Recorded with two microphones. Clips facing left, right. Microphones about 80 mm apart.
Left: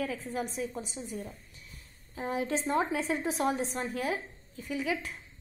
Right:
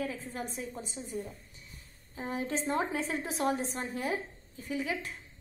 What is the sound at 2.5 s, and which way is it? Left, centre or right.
A woman's voice, left.